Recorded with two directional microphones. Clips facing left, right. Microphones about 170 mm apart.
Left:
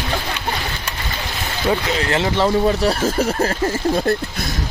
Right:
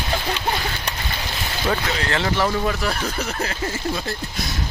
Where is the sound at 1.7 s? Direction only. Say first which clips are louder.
Left 4 dB; 20° left (ahead or behind).